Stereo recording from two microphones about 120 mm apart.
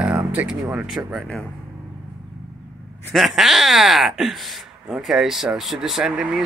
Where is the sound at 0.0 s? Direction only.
10° right (ahead or behind).